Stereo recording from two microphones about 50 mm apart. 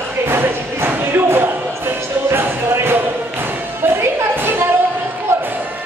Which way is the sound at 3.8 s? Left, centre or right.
Right.